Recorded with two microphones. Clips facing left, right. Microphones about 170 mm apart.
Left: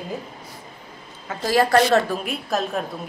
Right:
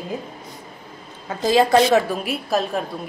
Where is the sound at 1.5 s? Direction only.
20° right (ahead or behind).